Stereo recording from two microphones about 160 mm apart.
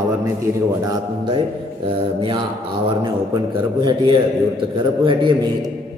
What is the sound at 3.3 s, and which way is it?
A man's voice, 25° right (ahead or behind).